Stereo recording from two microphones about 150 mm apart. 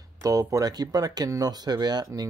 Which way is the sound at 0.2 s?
20° right (ahead or behind).